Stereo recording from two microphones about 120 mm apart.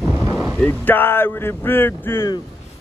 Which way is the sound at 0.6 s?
15° left (ahead or behind).